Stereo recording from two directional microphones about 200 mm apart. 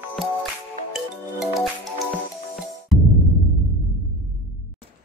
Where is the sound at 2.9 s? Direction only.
Centre (ahead or behind).